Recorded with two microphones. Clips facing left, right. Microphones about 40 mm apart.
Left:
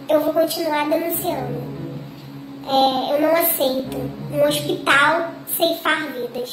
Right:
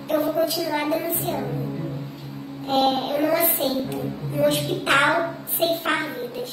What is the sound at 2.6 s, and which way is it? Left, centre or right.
Child singing, left.